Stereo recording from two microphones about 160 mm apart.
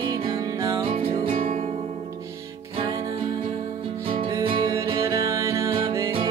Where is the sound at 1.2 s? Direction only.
35° right (ahead or behind).